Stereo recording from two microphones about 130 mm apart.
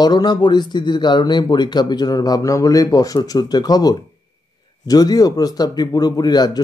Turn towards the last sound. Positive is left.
turn(degrees=30)  # may be behind; listen again after turning